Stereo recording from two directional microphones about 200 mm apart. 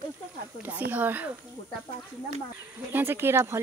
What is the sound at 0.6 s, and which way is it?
Speech, 10° right (ahead or behind).